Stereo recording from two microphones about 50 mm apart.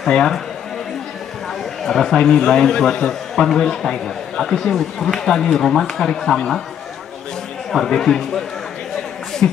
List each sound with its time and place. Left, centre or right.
0.1 s a man's voice: centre
1.8 s a man's voice: centre
7.7 s a man's voice: centre
9.4 s speech: left